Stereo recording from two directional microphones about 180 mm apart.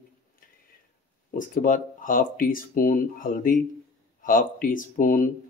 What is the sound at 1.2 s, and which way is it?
Speech, 45° left (ahead or behind).